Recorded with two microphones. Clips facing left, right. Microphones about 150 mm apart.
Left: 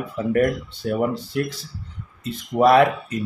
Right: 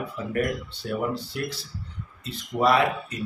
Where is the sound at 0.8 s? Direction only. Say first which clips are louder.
Left 6 dB; 50° left (ahead or behind).